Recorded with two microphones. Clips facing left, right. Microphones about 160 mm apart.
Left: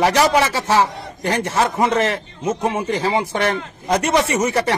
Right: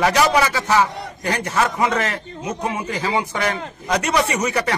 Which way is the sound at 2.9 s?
30° left (ahead or behind).